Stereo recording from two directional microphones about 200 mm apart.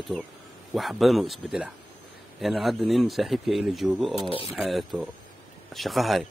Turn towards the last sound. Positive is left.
turn(degrees=0)  # may be behind; listen again after turning